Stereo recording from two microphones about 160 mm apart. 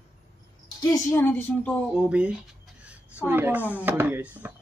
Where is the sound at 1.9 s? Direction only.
5° right (ahead or behind).